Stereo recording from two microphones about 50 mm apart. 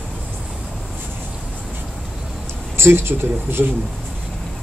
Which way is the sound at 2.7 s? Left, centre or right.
Right.